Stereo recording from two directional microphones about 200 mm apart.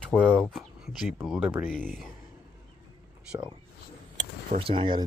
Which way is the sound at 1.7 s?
5° left (ahead or behind).